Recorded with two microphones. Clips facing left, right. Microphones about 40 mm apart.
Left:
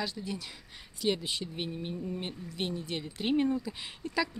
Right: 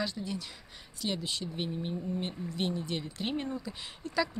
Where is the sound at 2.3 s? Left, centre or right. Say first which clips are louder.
Right 4 dB; right.